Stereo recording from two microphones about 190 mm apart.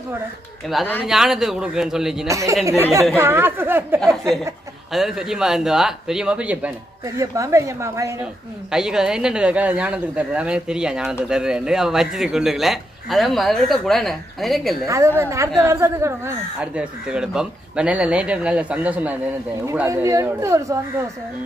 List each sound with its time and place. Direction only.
1.0 s speech: centre (ahead or behind)
2.2 s speech: 15° right (ahead or behind)
4.0 s speech: centre (ahead or behind); by 8.3 s 15° right (ahead or behind)
8.6 s speech: 5° right (ahead or behind)
14.9 s speech: 15° right (ahead or behind)